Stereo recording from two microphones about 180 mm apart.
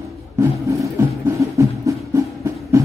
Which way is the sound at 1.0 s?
15° right (ahead or behind).